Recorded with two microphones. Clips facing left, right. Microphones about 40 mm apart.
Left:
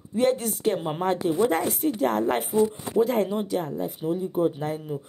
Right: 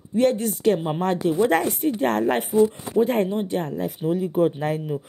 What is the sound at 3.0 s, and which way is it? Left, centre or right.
Speech, right.